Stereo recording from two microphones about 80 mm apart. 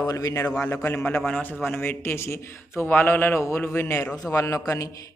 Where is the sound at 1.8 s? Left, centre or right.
Left.